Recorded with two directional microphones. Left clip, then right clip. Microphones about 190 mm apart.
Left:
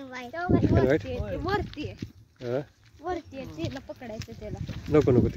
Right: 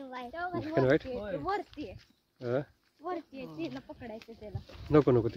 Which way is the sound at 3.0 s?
55° left (ahead or behind).